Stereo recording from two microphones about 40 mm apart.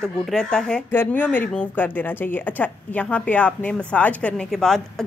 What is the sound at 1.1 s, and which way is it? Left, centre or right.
A woman's voice, left.